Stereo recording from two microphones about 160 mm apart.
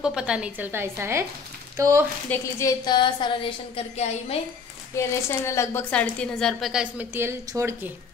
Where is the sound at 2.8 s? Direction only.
30° left (ahead or behind).